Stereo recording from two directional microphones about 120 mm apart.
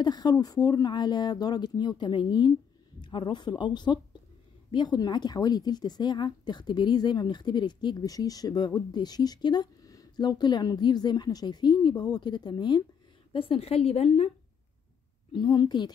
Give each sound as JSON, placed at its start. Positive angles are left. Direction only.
{"t": 0.0, "sound": "speech", "side_deg": 35}
{"t": 13.3, "sound": "a woman's voice", "side_deg": 50}
{"t": 15.3, "sound": "speech", "side_deg": 40}